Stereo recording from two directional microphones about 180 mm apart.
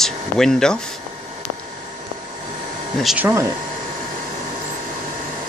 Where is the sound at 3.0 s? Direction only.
5° right (ahead or behind).